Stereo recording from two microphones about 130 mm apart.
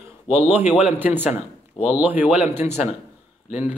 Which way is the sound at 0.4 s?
15° right (ahead or behind).